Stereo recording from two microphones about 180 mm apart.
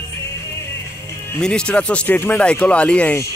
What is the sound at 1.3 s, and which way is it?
Speech, 5° left (ahead or behind).